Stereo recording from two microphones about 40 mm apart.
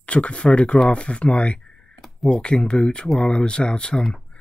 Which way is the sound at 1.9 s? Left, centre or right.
Centre.